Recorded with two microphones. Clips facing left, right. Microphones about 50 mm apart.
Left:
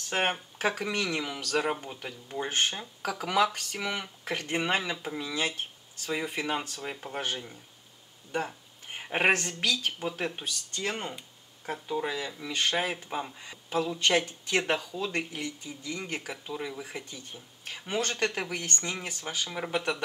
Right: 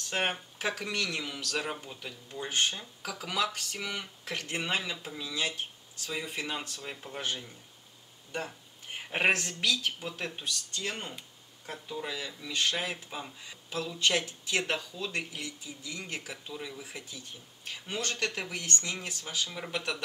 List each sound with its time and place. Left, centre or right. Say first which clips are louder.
0.1 s speech: left 3 dB; centre
8.5 s a sound: left 1 dB; centre
9.3 s speech: left 3 dB; centre
9.6 s speech: left 1 dB; centre